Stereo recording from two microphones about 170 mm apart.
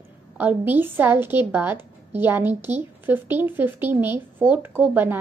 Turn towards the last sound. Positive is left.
turn(degrees=-10)  # may be behind; listen again after turning